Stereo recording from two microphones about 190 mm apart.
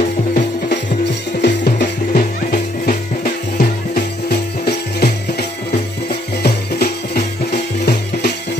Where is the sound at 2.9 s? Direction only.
45° left (ahead or behind).